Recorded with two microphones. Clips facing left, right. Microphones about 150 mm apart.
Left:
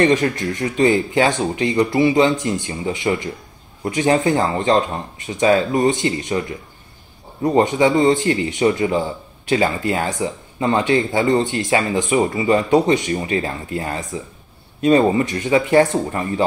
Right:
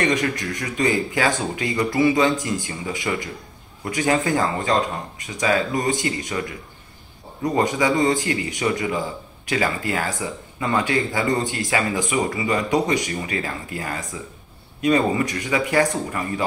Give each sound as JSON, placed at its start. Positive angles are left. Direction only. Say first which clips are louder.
{"t": 0.0, "sound": "speech", "louder": "left 6 dB", "side_deg": 30}
{"t": 7.4, "sound": "speech", "louder": "left 5 dB", "side_deg": 25}